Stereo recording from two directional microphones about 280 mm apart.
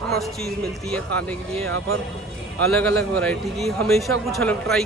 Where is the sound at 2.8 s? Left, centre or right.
Centre.